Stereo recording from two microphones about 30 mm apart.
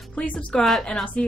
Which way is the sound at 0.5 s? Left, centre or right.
Left.